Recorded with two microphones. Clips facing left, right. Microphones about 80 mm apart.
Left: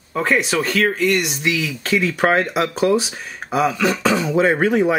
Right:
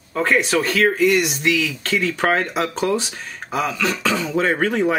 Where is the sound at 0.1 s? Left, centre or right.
Centre.